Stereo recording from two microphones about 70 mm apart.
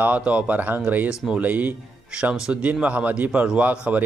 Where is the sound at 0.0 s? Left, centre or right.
Right.